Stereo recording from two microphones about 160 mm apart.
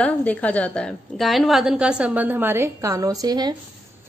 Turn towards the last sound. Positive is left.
turn(degrees=-25)  # may be behind; listen again after turning